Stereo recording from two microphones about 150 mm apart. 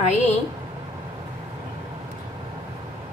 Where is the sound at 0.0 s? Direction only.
50° left (ahead or behind).